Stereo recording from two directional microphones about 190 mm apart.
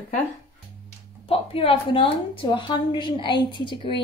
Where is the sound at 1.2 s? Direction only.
30° left (ahead or behind).